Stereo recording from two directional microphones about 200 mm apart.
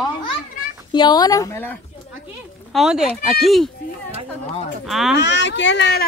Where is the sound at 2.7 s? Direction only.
Centre (ahead or behind).